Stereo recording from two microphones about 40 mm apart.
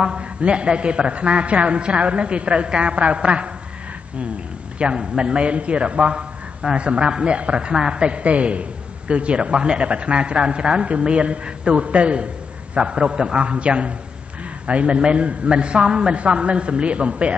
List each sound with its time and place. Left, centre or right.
0.0 s a man's voice: right
4.7 s a man's voice: right
16.2 s a man's voice: right